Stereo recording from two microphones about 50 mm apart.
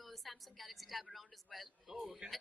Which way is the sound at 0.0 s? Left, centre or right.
Centre.